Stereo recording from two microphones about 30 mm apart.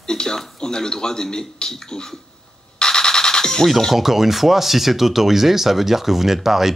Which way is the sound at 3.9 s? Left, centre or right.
Centre.